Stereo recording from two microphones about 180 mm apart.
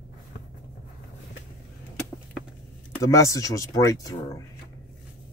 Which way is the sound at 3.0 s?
15° left (ahead or behind).